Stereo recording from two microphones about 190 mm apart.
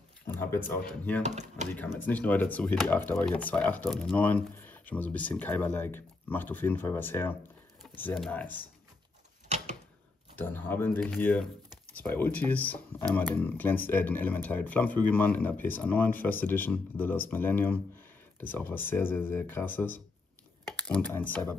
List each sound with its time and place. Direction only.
0.3 s speech: 10° left (ahead or behind)
1.2 s speech: 35° right (ahead or behind)
1.7 s speech: 10° left (ahead or behind)
10.3 s speech: 10° left (ahead or behind)